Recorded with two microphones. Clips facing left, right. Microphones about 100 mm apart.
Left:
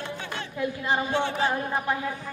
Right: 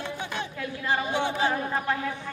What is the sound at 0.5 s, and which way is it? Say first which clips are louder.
Speech: left 4 dB; 20° left (ahead or behind).